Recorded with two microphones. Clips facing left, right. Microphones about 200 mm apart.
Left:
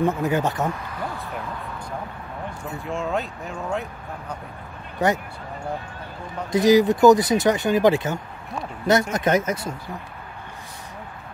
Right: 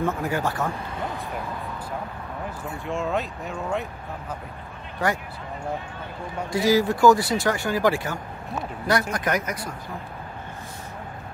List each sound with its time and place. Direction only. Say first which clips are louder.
0.0 s speech: left 4 dB; 20° left (ahead or behind)
2.8 s speech: even; centre (ahead or behind)
5.0 s speech: left 4 dB; 20° left (ahead or behind)
6.5 s speech: left 5 dB; 20° left (ahead or behind)